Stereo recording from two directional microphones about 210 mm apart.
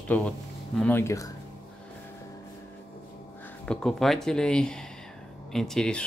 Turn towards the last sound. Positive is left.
turn(degrees=5)  # may be behind; listen again after turning